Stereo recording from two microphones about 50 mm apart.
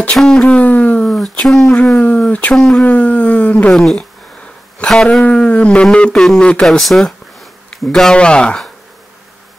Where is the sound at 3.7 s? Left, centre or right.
Centre.